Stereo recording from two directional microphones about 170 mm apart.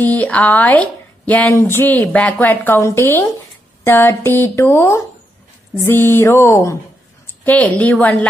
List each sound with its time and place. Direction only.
0.0 s a woman's voice: 10° left (ahead or behind)